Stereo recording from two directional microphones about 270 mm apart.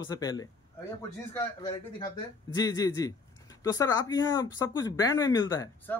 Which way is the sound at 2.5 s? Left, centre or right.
Centre.